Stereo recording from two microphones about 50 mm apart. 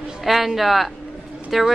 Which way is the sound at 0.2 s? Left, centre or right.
Centre.